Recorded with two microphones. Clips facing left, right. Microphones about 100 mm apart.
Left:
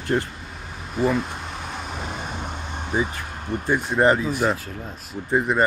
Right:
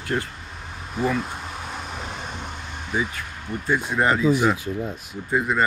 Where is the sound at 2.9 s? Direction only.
30° left (ahead or behind).